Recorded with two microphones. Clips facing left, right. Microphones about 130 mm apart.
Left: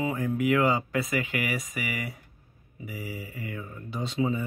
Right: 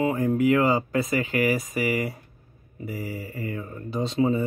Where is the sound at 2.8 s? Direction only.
45° right (ahead or behind).